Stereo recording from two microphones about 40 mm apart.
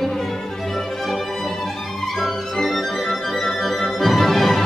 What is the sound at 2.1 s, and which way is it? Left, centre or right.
Music, centre.